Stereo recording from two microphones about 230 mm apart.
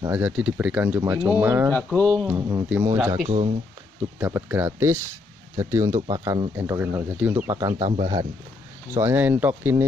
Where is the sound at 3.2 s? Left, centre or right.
Right.